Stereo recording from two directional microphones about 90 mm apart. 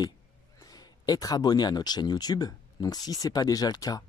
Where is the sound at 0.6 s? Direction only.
45° left (ahead or behind).